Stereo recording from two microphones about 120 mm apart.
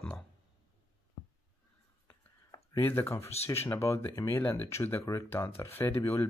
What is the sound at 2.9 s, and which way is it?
Speech, 20° left (ahead or behind).